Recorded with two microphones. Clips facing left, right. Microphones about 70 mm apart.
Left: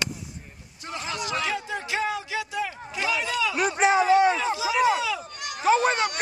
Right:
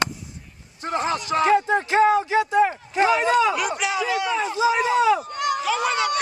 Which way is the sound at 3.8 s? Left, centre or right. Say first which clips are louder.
Left 5 dB; left.